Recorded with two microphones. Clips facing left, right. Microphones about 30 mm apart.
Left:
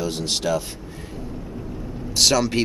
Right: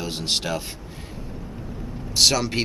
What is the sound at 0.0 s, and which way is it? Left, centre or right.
Speech, right.